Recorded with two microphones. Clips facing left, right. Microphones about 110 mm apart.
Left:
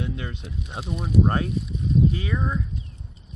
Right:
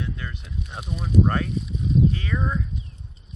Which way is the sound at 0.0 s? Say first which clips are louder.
Left 2 dB; 20° left (ahead or behind).